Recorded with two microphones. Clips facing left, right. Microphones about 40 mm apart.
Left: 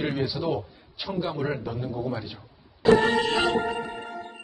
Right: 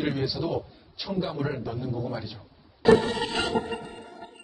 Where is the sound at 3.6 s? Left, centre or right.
Left.